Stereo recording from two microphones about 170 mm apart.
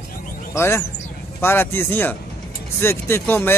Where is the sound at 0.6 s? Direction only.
15° left (ahead or behind).